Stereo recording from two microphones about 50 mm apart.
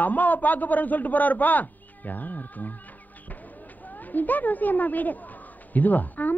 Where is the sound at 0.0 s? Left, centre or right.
Left.